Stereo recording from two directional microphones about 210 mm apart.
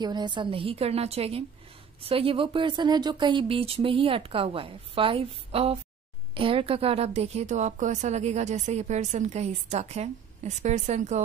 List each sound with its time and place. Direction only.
0.0 s a woman's voice: 20° right (ahead or behind)